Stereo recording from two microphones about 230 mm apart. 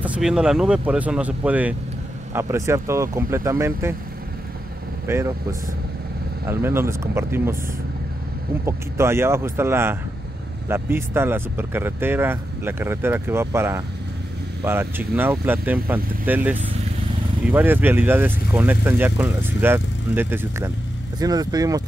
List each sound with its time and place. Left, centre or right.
0.0 s speech: centre
5.0 s speech: centre
8.6 s speech: centre